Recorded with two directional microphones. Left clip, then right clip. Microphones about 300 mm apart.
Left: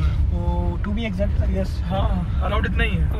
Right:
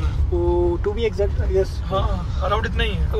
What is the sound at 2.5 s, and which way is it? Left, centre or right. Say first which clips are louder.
Speech: right 2 dB; right.